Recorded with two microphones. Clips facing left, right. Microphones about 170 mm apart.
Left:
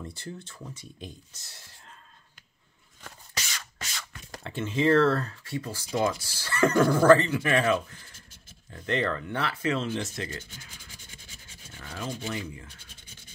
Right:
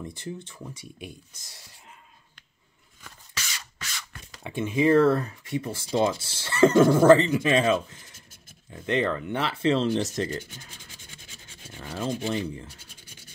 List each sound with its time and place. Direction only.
0.0 s speech: 15° right (ahead or behind)
4.4 s speech: 15° right (ahead or behind); by 10.3 s 35° right (ahead or behind)
11.7 s speech: 25° right (ahead or behind)
12.6 s scratch: 10° right (ahead or behind)